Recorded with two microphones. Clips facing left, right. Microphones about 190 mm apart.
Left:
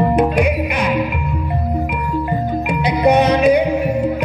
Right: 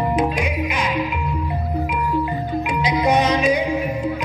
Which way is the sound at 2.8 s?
60° left (ahead or behind).